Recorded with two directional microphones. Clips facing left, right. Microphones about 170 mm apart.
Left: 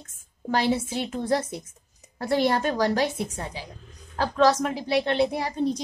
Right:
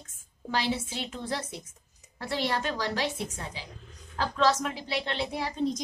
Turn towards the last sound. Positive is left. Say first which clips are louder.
# left 8 dB
turn(degrees=45)  # may be behind; listen again after turning